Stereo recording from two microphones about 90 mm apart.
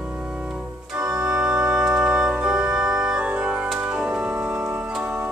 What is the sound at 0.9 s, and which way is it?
Organ, 10° right (ahead or behind).